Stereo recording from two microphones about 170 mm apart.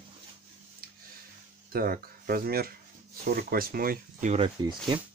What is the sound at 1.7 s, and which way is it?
Speech, 60° right (ahead or behind).